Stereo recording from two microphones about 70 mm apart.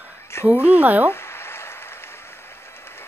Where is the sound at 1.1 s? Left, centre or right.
Left.